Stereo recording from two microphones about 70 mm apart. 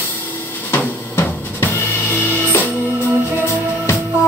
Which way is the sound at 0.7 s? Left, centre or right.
Left.